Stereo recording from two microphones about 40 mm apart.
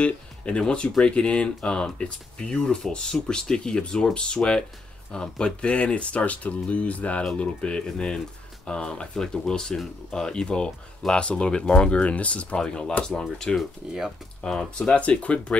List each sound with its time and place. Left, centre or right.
0.6 s speech: left
12.5 s speech: left
13.6 s speech: centre
14.4 s speech: left
15.0 s speech: left